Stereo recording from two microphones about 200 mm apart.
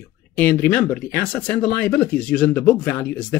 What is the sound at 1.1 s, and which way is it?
Speech, 45° left (ahead or behind).